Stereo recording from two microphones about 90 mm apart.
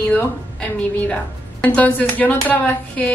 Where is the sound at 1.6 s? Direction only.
15° left (ahead or behind).